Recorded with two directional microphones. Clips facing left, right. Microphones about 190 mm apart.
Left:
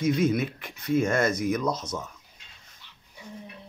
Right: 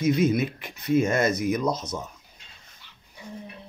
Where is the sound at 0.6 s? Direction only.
15° right (ahead or behind).